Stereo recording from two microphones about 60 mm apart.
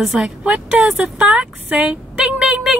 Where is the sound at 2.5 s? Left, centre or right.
Centre.